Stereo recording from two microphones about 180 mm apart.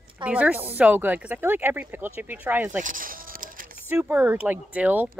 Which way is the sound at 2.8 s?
50° right (ahead or behind).